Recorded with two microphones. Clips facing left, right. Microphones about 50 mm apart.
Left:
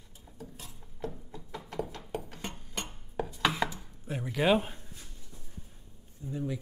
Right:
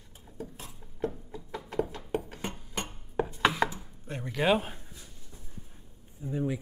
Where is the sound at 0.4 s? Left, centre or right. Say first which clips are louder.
Right 6 dB; right.